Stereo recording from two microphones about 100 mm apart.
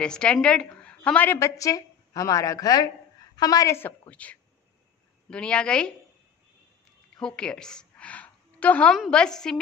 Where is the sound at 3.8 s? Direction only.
15° left (ahead or behind).